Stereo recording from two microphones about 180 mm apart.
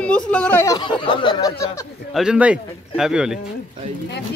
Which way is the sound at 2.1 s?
5° right (ahead or behind).